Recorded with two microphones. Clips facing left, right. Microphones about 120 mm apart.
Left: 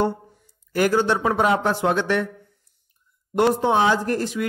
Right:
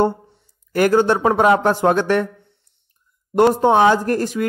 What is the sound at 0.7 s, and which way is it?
A man's voice, 55° right (ahead or behind).